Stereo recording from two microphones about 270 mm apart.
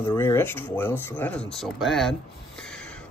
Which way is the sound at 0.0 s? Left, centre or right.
Centre.